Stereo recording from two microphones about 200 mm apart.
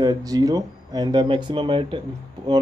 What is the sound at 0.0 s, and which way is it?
Speech, 20° right (ahead or behind).